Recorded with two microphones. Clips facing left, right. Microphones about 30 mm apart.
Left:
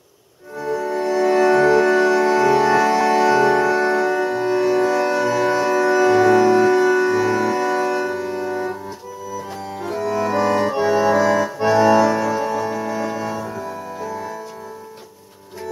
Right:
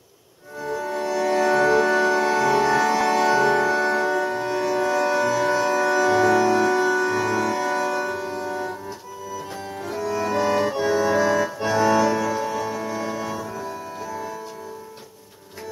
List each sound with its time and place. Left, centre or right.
0.6 s music: left
0.8 s music: left
4.4 s music: left
4.7 s music: left
9.8 s accordion: centre
11.5 s accordion: left
12.2 s music: centre